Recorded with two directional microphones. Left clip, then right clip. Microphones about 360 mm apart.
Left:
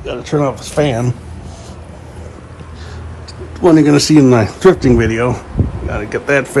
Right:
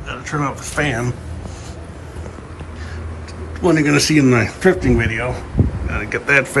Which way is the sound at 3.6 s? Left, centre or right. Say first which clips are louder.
Left 6 dB; centre.